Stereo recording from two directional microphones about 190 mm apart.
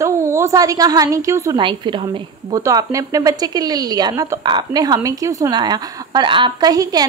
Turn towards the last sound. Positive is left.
turn(degrees=-20)  # may be behind; listen again after turning